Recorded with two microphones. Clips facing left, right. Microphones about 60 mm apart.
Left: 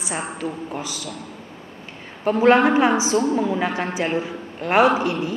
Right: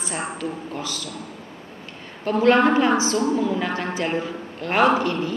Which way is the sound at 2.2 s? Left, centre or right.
Centre.